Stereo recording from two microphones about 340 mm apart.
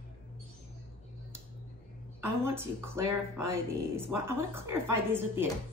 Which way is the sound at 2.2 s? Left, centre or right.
Centre.